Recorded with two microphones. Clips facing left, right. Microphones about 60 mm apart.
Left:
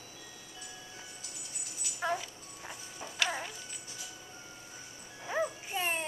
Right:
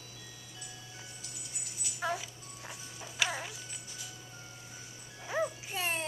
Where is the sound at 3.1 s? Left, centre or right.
Centre.